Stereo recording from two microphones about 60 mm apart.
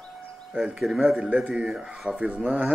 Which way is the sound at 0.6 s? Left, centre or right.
Centre.